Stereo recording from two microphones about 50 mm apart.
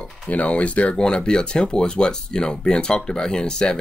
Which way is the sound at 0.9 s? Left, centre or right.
Centre.